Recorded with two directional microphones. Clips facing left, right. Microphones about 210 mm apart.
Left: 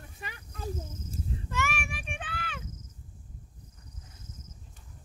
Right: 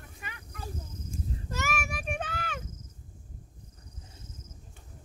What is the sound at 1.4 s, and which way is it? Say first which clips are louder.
Child singing: even; 40° right (ahead or behind).